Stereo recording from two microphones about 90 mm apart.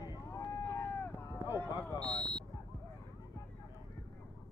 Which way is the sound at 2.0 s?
10° left (ahead or behind).